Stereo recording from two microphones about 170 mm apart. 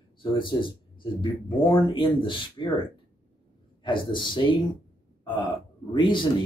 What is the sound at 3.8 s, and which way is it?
Speech, 30° left (ahead or behind).